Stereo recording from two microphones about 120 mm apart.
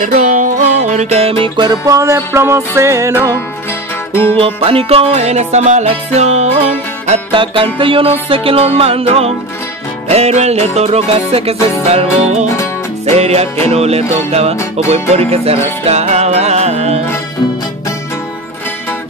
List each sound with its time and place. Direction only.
0.0 s music: 90° right; by 2.0 s 40° right (ahead or behind)
2.0 s music: 25° right (ahead or behind)
4.1 s music: 20° left (ahead or behind)
4.4 s music: 50° right (ahead or behind); by 6.6 s 70° right (ahead or behind)
7.2 s music: 45° right (ahead or behind)
13.0 s music: 65° right (ahead or behind)